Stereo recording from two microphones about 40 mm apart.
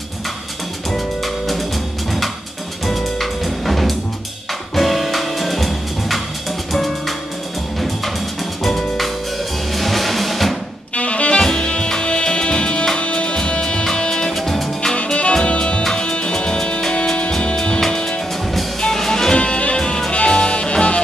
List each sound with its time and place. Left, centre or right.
0.9 s music: centre
2.9 s music: centre
9.7 s music: centre
11.0 s music: left
11.3 s saxophone: centre
12.0 s music: left
14.3 s music: centre
15.3 s music: left
19.3 s music: left